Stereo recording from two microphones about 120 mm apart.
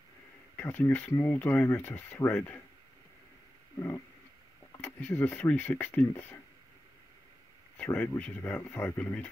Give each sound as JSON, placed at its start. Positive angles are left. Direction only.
{"t": 0.6, "sound": "speech", "side_deg": 15}
{"t": 4.7, "sound": "speech", "side_deg": 15}
{"t": 7.7, "sound": "speech", "side_deg": 15}